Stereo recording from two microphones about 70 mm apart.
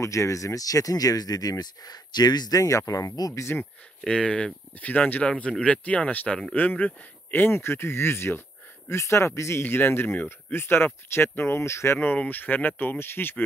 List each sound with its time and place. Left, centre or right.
0.0 s speech: left
2.6 s speech: left
4.0 s speech: centre; by 9.7 s left
9.7 s speech: left
12.0 s speech: left